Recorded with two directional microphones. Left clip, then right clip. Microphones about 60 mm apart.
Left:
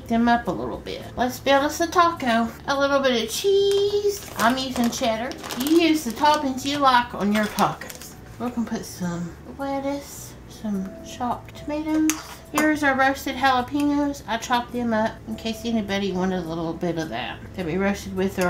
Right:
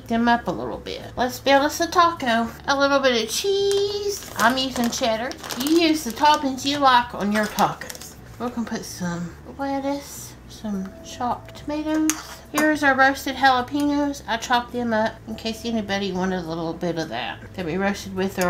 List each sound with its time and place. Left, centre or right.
0.1 s a woman's voice: right
7.4 s speech: centre
8.4 s a woman's voice: right